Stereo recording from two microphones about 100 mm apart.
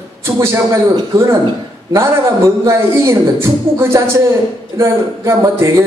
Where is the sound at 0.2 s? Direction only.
25° right (ahead or behind).